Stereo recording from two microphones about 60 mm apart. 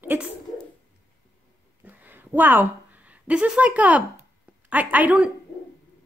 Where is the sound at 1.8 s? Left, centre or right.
Right.